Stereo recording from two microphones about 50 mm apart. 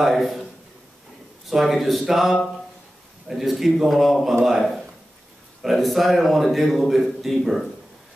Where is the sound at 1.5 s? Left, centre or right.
Centre.